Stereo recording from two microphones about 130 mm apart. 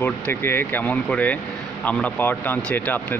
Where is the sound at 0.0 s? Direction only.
15° left (ahead or behind).